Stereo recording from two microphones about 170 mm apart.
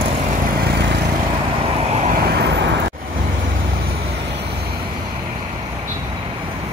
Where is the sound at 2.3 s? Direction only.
80° right.